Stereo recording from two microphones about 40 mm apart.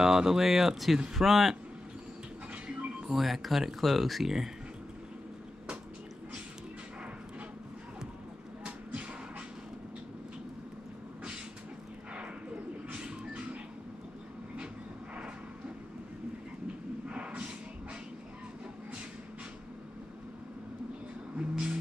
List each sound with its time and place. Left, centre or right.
0.0 s speech: centre
2.5 s music: right
3.1 s speech: centre
12.9 s music: right
17.1 s a sound: right
21.4 s music: right